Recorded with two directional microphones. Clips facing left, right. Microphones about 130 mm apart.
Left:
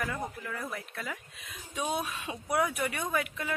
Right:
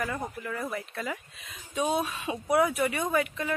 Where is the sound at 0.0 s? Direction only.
Centre (ahead or behind).